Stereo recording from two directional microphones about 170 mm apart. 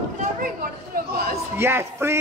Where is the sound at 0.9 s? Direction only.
60° right (ahead or behind).